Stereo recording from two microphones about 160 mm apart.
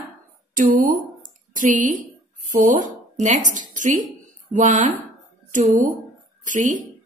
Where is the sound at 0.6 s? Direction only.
60° right (ahead or behind).